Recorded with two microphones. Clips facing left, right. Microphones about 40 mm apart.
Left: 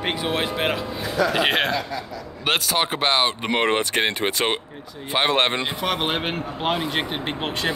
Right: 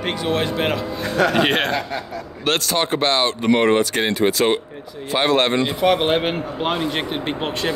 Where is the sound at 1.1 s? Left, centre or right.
Right.